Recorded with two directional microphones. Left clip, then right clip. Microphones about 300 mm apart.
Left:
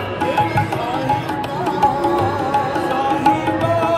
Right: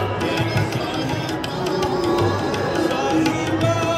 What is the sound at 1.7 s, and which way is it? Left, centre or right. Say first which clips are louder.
Music: left 5 dB; centre.